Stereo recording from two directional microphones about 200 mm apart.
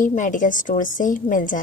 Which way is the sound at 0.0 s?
40° left (ahead or behind).